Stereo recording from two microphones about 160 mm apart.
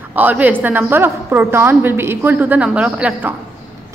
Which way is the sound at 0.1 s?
10° right (ahead or behind).